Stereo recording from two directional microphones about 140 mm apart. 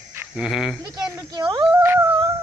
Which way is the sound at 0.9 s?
25° right (ahead or behind).